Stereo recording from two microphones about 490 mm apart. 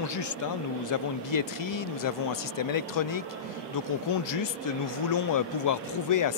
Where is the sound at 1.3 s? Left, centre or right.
Left.